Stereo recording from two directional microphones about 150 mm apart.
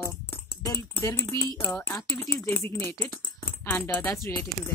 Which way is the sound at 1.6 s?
15° left (ahead or behind).